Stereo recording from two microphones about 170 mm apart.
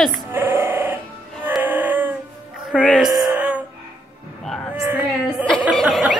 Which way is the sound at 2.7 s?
5° left (ahead or behind).